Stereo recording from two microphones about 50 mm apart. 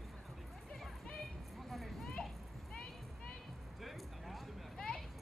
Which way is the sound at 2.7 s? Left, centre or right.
Centre.